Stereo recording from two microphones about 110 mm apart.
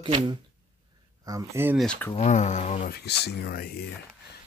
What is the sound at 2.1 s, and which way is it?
Speech, 90° left.